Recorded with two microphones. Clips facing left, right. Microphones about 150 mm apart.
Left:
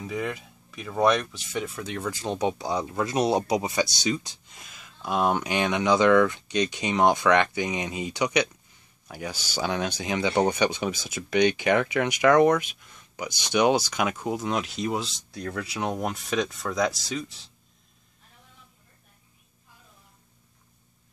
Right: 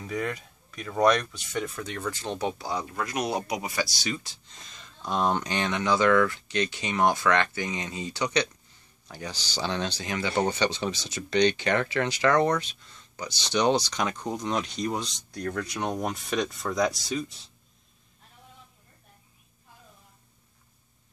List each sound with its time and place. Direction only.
0.0 s speech: 5° left (ahead or behind)